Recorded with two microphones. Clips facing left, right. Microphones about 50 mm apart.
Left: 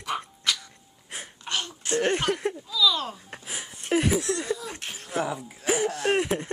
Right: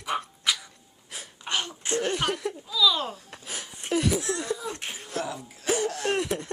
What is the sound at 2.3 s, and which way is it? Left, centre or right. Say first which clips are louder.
Speech: left 3 dB; left.